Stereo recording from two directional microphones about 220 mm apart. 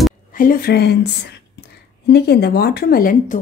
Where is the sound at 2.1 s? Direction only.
45° left (ahead or behind).